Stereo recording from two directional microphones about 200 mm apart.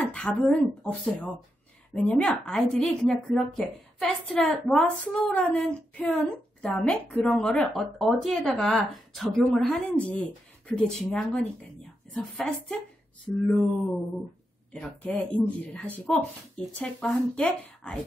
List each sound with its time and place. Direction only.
0.0 s speech: 5° left (ahead or behind)
14.7 s speech: 5° left (ahead or behind)